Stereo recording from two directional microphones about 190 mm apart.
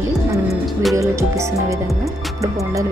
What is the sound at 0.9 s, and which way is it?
Music, 15° right (ahead or behind).